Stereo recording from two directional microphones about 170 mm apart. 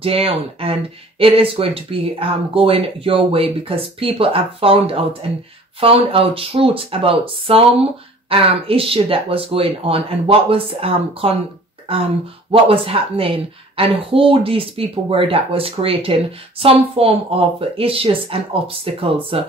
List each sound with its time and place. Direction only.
0.0 s a woman's voice: 35° right (ahead or behind)